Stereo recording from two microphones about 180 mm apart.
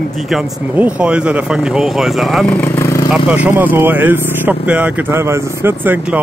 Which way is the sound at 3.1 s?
5° right (ahead or behind).